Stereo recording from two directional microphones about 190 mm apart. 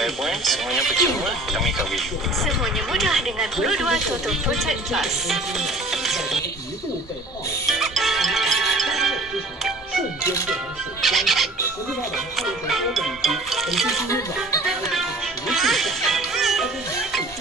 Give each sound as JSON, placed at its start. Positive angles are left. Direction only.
{"t": 0.0, "sound": "speech", "side_deg": 0}
{"t": 7.6, "sound": "music", "side_deg": 0}
{"t": 10.5, "sound": "speech", "side_deg": 0}
{"t": 14.0, "sound": "speech", "side_deg": 15}
{"t": 14.9, "sound": "music", "side_deg": 0}